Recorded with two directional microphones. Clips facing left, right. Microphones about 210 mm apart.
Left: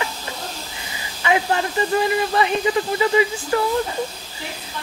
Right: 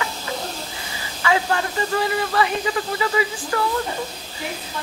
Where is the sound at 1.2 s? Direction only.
20° left (ahead or behind).